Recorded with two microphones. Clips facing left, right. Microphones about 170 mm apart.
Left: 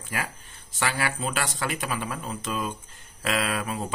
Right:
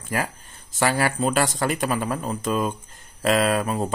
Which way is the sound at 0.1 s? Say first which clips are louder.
Right 6 dB; 45° right (ahead or behind).